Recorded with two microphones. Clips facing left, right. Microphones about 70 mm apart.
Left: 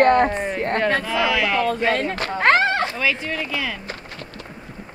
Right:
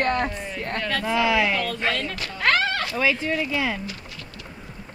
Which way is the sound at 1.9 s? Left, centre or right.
Left.